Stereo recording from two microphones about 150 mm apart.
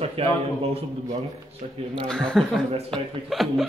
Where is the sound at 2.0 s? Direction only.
5° left (ahead or behind).